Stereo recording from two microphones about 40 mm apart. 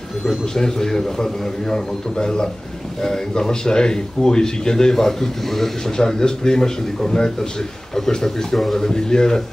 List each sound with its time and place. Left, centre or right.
0.6 s speech: centre